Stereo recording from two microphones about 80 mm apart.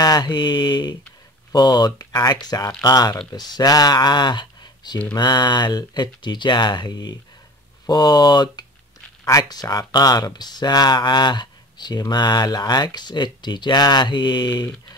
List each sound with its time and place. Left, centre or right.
0.0 s mantra: left
1.5 s speech: left